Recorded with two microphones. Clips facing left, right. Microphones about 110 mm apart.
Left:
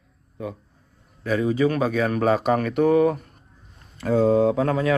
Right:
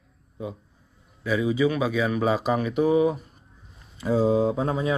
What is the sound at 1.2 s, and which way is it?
A man's voice, 40° left (ahead or behind).